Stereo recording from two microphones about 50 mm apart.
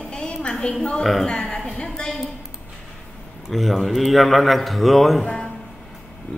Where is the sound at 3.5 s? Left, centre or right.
Centre.